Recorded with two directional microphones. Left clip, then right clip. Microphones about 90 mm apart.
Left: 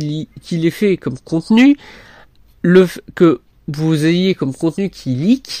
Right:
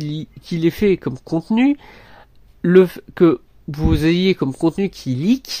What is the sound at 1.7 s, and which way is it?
Speech, 20° left (ahead or behind).